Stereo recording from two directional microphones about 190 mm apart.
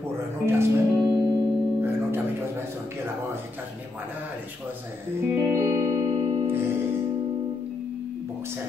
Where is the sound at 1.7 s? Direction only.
10° right (ahead or behind).